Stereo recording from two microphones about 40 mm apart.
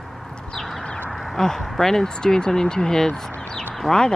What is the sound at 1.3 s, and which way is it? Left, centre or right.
Speech, centre.